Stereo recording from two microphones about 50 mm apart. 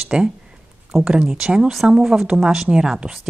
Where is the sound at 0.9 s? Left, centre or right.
Centre.